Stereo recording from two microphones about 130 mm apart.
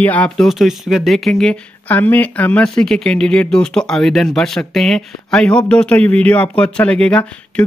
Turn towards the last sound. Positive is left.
turn(degrees=10)  # may be behind; listen again after turning